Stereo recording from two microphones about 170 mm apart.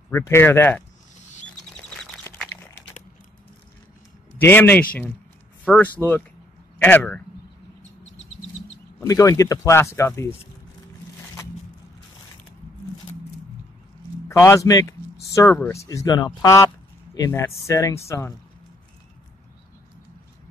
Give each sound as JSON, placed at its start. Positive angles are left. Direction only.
{"t": 0.1, "sound": "a man's voice", "side_deg": 15}
{"t": 2.2, "sound": "a sound", "side_deg": 10}
{"t": 4.4, "sound": "a man's voice", "side_deg": 10}
{"t": 9.0, "sound": "a man's voice", "side_deg": 20}
{"t": 14.3, "sound": "a man's voice", "side_deg": 20}